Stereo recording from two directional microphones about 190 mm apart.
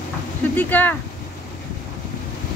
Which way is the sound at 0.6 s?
10° left (ahead or behind).